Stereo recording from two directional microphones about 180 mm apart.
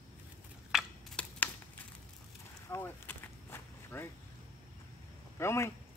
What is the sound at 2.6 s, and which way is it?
Walk, 15° left (ahead or behind).